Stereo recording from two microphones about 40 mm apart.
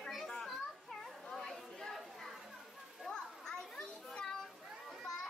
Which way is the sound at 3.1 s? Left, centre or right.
Centre.